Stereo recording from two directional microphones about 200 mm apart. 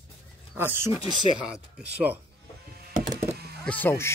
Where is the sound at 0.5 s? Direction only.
10° right (ahead or behind).